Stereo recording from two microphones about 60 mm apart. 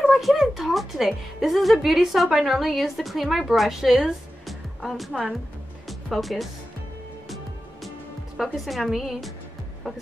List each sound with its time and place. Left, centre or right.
0.0 s a woman's voice: centre
5.9 s music: centre
8.4 s a woman's voice: centre